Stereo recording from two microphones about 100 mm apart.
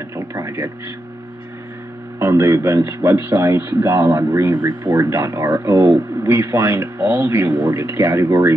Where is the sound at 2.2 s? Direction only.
25° right (ahead or behind).